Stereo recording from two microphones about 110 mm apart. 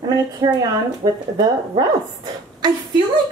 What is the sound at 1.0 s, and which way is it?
Speech, 45° right (ahead or behind).